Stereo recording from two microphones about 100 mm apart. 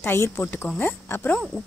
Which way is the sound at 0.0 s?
25° left (ahead or behind).